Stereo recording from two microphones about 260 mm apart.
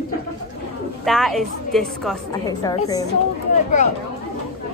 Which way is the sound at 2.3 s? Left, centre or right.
Centre.